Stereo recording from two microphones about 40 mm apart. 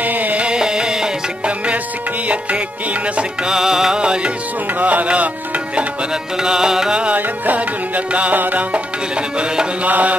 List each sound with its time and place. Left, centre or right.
0.0 s music: right
0.5 s music: centre
2.2 s music: right
3.4 s music: centre
4.0 s music: right
4.7 s music: right
6.4 s music: centre
7.2 s music: right
8.4 s music: right
8.7 s music: right
9.8 s music: right